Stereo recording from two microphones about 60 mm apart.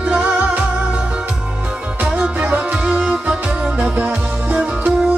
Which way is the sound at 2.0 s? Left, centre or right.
Centre.